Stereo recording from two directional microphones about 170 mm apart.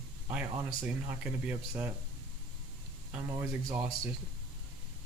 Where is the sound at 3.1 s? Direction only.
10° right (ahead or behind).